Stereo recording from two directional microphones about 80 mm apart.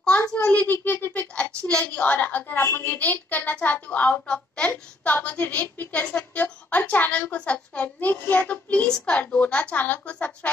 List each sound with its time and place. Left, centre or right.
0.5 s a child's voice: centre